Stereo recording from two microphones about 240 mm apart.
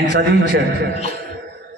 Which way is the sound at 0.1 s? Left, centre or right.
Right.